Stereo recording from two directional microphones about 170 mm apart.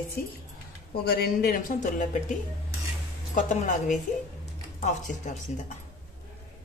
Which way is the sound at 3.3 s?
45° left (ahead or behind).